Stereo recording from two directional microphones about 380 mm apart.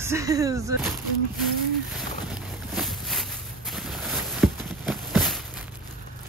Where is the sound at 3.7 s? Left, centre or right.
Centre.